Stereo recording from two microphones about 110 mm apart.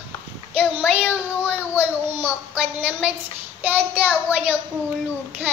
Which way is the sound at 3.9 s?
15° right (ahead or behind).